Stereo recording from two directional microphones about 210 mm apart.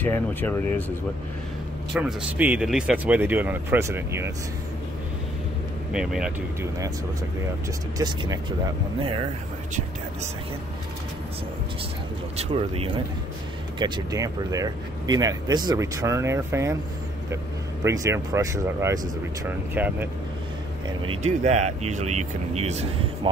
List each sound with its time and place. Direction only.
0.0 s speech: 10° left (ahead or behind)
2.0 s speech: 5° right (ahead or behind)
5.9 s speech: 5° right (ahead or behind)
8.0 s speech: 20° right (ahead or behind)
12.4 s speech: 25° right (ahead or behind)
17.8 s speech: 15° right (ahead or behind)
21.0 s speech: 30° right (ahead or behind)